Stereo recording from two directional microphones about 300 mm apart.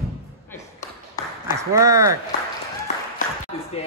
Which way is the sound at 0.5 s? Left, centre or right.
Centre.